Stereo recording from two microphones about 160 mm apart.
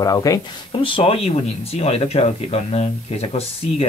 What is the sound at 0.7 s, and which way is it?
Speech, 35° left (ahead or behind).